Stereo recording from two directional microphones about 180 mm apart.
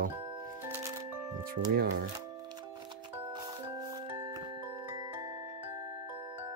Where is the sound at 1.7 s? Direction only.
65° right (ahead or behind).